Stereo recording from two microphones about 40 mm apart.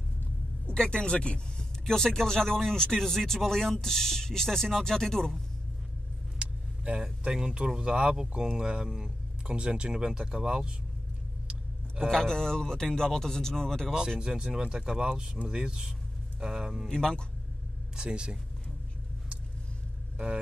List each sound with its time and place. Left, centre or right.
0.7 s speech: left
1.9 s speech: centre
6.4 s vehicle: right
7.3 s speech: right
8.2 s speech: centre
12.1 s speech: centre
14.2 s speech: centre
16.8 s speech: centre
17.9 s speech: right